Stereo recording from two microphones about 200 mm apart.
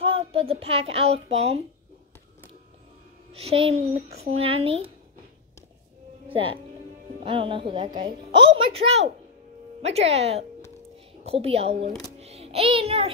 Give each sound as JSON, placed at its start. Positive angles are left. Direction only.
{"t": 0.0, "sound": "a child's voice", "side_deg": -30}
{"t": 3.3, "sound": "a woman's voice", "side_deg": -30}
{"t": 6.3, "sound": "a woman's voice", "side_deg": -25}
{"t": 12.2, "sound": "music", "side_deg": -30}